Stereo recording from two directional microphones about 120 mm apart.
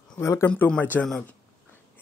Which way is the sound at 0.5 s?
10° left (ahead or behind).